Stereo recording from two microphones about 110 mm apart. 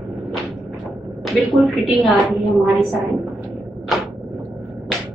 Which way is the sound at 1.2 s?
Centre (ahead or behind).